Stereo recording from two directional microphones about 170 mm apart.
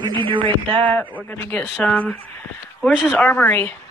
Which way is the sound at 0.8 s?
10° left (ahead or behind).